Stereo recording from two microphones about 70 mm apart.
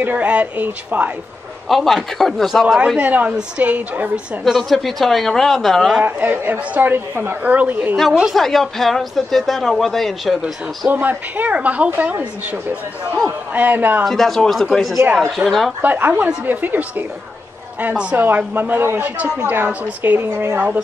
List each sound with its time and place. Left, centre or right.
0.1 s a woman's voice: centre
1.7 s speech: centre
3.0 s a woman's voice: right
4.5 s speech: centre
6.0 s a woman's voice: right
8.1 s a woman's voice: centre
8.4 s speech: centre
10.9 s a woman's voice: right
13.5 s a woman's voice: right
14.0 s speech: centre
15.8 s a woman's voice: right